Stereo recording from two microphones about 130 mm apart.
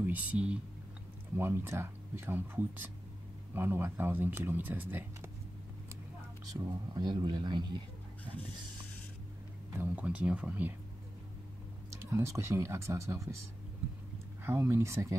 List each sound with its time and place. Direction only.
0.0 s speech: 10° right (ahead or behind)
6.9 s a man's voice: 35° right (ahead or behind)
9.8 s speech: 10° right (ahead or behind)
11.9 s speech: 20° right (ahead or behind)
14.4 s speech: 20° right (ahead or behind)